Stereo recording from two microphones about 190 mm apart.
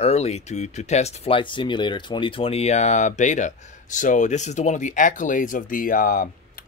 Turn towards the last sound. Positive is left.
turn(degrees=45)  # may be behind; listen again after turning